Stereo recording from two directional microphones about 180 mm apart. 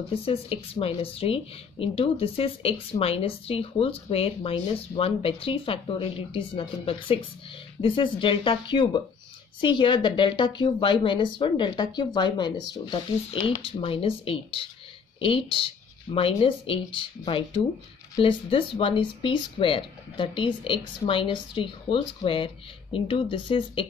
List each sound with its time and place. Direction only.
0.1 s speech: 30° left (ahead or behind)